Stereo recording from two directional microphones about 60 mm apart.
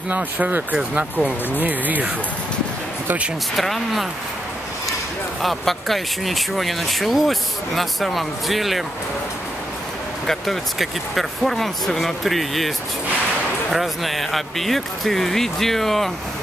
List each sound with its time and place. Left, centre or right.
0.1 s speech: right
0.7 s speech: centre
3.5 s speech: centre
5.4 s speech: centre
10.2 s speech: centre